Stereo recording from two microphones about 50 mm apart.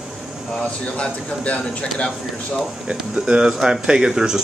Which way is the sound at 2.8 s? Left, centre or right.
Centre.